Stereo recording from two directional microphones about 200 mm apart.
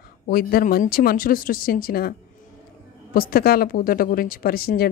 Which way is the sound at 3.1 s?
50° left (ahead or behind).